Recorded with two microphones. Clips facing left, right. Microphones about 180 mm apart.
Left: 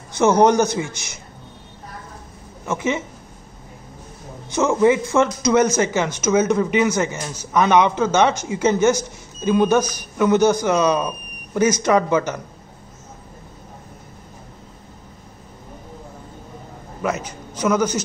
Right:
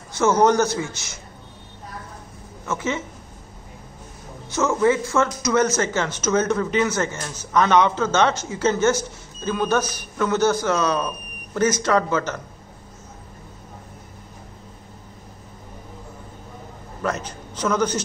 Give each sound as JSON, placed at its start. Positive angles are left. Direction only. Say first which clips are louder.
{"t": 0.1, "sound": "speech", "louder": "left 3 dB", "side_deg": 15}
{"t": 2.6, "sound": "speech", "louder": "left 3 dB", "side_deg": 15}
{"t": 4.5, "sound": "speech", "louder": "left 3 dB", "side_deg": 15}
{"t": 17.0, "sound": "a man's voice", "louder": "left 2 dB", "side_deg": 10}